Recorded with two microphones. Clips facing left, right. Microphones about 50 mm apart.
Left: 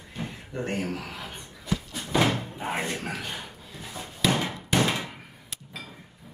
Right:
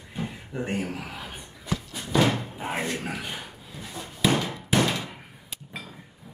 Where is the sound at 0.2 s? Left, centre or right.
Centre.